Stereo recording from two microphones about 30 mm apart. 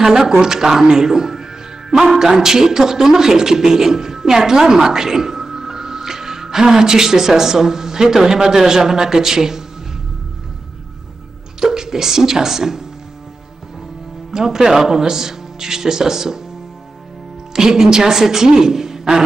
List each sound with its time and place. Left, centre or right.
0.0 s speech: centre
11.6 s speech: centre
14.3 s speech: centre
17.5 s a woman's voice: centre